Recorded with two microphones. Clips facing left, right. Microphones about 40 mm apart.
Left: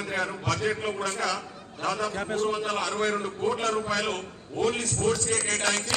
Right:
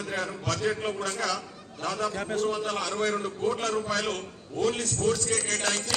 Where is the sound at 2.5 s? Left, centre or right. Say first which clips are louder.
Left 1 dB; left.